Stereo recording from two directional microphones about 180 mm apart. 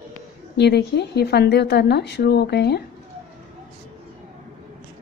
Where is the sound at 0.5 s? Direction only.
70° left (ahead or behind).